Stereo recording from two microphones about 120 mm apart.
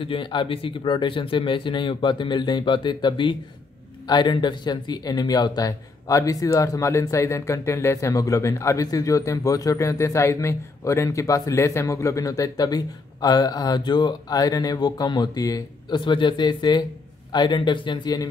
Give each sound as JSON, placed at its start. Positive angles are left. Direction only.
{"t": 0.0, "sound": "a man's voice", "side_deg": 45}